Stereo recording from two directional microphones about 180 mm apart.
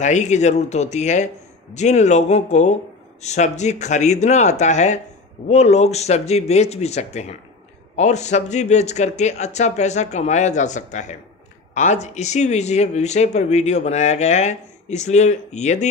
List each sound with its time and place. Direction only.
0.0 s a man's voice: 40° left (ahead or behind)